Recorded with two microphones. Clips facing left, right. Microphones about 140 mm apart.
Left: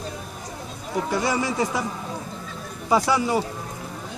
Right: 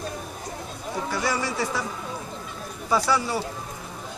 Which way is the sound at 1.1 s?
20° left (ahead or behind).